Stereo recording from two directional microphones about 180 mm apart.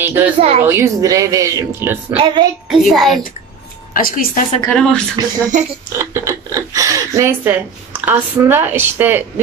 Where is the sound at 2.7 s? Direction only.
Centre (ahead or behind).